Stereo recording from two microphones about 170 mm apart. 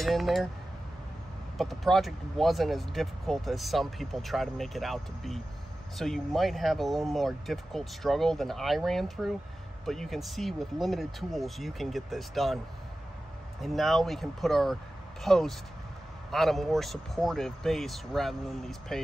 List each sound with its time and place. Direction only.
0.0 s speech: centre (ahead or behind)
1.6 s speech: centre (ahead or behind)
13.6 s speech: centre (ahead or behind)